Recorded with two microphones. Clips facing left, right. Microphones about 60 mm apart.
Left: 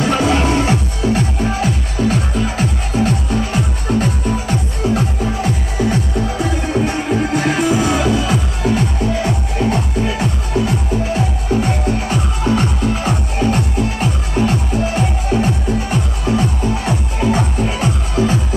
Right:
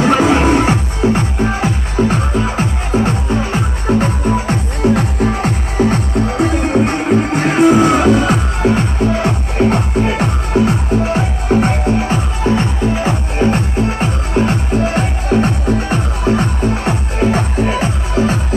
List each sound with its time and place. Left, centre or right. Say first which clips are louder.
0.0 s music: right 4 dB; right
4.9 s music: right 3 dB; right
11.6 s music: right 4 dB; right